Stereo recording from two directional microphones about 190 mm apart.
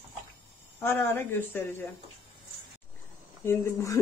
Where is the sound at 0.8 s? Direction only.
10° left (ahead or behind).